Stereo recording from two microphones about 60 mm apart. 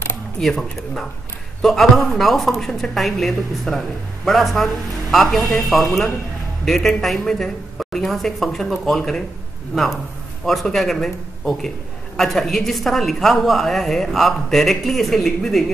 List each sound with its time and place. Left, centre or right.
0.4 s a woman's voice: centre
10.4 s a woman's voice: centre